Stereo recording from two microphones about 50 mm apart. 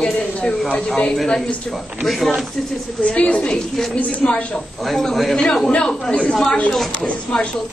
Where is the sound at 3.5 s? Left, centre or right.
Centre.